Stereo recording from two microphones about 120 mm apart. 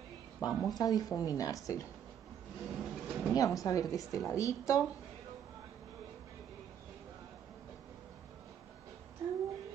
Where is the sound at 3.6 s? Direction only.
30° left (ahead or behind).